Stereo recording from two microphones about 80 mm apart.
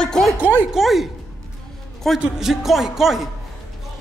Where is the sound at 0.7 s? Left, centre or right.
Centre.